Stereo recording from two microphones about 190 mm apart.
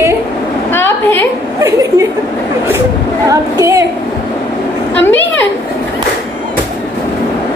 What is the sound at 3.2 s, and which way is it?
Speech, 15° right (ahead or behind).